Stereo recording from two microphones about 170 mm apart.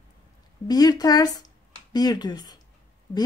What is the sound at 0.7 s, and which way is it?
Speech, 25° left (ahead or behind).